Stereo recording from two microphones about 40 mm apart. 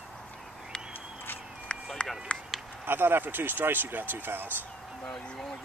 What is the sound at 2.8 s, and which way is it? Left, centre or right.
Speech, right.